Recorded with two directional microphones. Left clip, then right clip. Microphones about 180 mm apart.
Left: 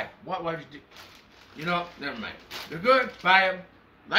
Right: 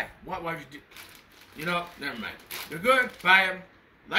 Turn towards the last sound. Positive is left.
turn(degrees=0)  # may be behind; listen again after turning